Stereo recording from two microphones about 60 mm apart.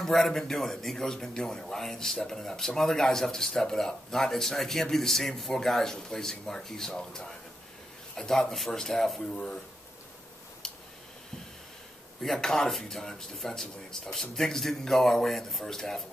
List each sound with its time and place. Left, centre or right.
0.0 s a man's voice: centre
12.2 s a man's voice: centre